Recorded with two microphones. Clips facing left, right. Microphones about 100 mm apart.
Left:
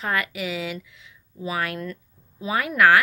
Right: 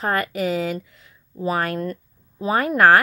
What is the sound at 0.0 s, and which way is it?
Speech, 40° right (ahead or behind).